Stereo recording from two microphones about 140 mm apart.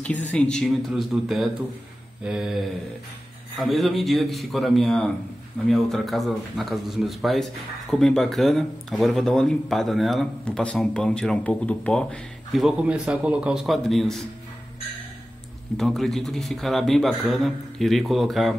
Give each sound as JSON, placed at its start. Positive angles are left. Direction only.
{"t": 0.3, "sound": "speech", "side_deg": 5}
{"t": 15.8, "sound": "speech", "side_deg": 0}